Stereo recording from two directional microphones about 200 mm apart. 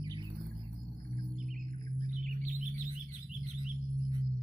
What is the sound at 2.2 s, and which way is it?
Chirp, 40° right (ahead or behind).